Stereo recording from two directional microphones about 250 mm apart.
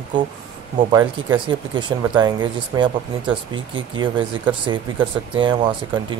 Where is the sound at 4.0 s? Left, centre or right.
Centre.